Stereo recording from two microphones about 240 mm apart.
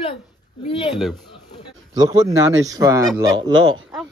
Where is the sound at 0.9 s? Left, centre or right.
Centre.